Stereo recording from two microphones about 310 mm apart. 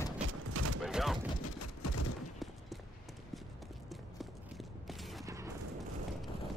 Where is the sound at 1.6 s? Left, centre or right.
Left.